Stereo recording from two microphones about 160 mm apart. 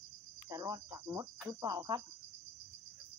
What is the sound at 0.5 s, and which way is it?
Speech, 20° right (ahead or behind).